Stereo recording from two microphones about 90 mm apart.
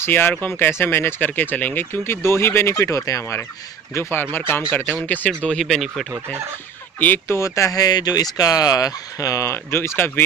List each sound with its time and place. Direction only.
0.0 s speech: 25° left (ahead or behind)
5.6 s speech: centre (ahead or behind)
7.0 s speech: 20° left (ahead or behind)
7.3 s speech: 35° left (ahead or behind)